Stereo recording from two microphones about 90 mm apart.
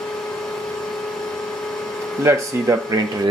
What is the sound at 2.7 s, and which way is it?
Speech, 40° right (ahead or behind).